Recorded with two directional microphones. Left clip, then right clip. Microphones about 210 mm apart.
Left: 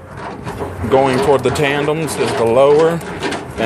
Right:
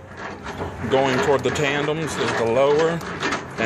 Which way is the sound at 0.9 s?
10° left (ahead or behind).